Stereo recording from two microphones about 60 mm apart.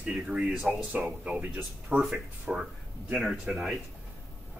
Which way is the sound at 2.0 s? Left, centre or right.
Centre.